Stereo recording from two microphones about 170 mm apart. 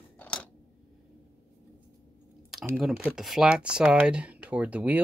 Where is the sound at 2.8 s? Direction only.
Centre (ahead or behind).